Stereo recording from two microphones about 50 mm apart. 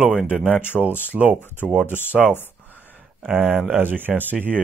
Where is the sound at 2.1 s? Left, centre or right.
Right.